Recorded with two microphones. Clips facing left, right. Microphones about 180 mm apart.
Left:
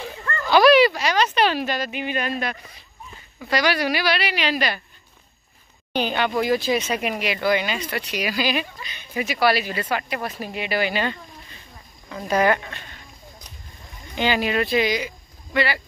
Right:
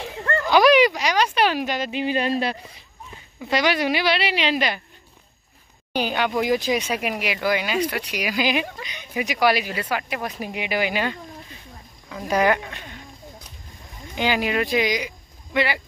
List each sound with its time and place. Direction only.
0.5 s speech: 15° right (ahead or behind)
1.9 s a woman's voice: 30° right (ahead or behind)
5.9 s speech: 10° right (ahead or behind)
14.1 s speech: 10° right (ahead or behind)